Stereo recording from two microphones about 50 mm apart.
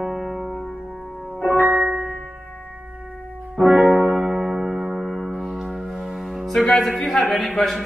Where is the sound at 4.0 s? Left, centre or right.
Right.